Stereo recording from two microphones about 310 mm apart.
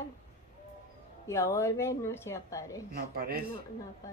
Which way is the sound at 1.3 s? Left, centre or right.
Centre.